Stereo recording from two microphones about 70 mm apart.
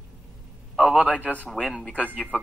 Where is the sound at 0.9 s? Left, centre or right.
Centre.